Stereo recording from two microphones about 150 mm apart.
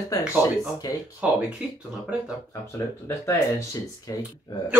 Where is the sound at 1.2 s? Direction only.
10° right (ahead or behind).